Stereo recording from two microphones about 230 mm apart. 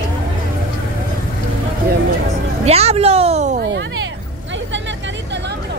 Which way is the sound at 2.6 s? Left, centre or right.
Right.